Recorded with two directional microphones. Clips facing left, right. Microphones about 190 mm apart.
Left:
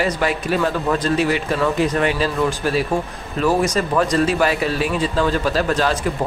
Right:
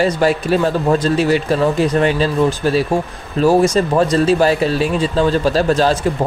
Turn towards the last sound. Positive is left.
turn(degrees=-30)  # may be behind; listen again after turning